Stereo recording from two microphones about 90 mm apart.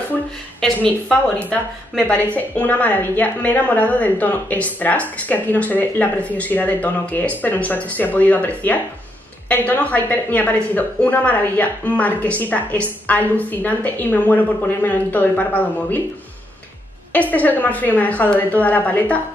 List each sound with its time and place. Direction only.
0.6 s a sound: 5° left (ahead or behind)
1.0 s a woman's voice: 10° left (ahead or behind)
17.1 s a woman's voice: 15° left (ahead or behind)